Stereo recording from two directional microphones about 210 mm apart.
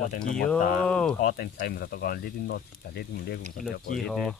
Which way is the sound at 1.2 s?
45° left (ahead or behind).